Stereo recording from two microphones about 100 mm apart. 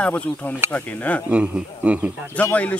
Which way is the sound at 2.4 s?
15° left (ahead or behind).